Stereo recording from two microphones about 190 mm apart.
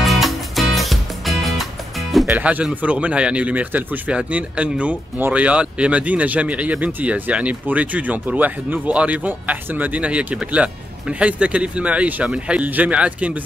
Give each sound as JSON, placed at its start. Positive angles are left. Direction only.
{"t": 0.0, "sound": "music", "side_deg": 0}